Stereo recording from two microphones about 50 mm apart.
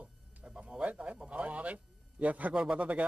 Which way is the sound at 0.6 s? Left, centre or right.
Right.